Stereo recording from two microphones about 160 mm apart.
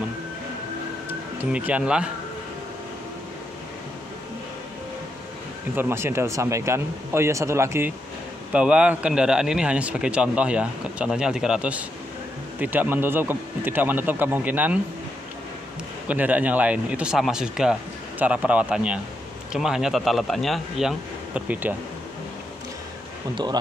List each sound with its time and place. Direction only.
1.0 s speech: 10° right (ahead or behind)
5.8 s a man's voice: 15° right (ahead or behind)
16.1 s a man's voice: 10° right (ahead or behind)
23.3 s speech: 25° right (ahead or behind)